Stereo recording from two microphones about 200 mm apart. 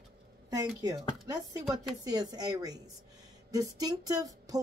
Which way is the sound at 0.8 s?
20° right (ahead or behind).